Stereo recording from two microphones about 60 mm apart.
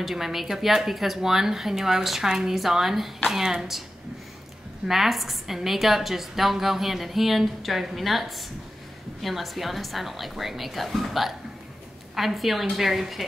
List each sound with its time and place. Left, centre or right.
0.0 s a woman's voice: centre
4.8 s a woman's voice: centre